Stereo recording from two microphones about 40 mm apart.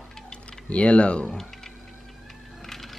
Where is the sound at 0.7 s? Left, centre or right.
Left.